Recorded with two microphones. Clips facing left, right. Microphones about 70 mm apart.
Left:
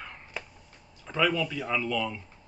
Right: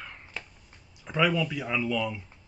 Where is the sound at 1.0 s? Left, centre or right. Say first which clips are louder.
Right 1 dB; centre.